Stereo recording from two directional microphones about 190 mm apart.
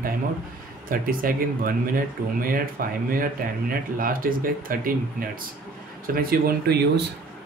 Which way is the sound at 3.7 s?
50° right (ahead or behind).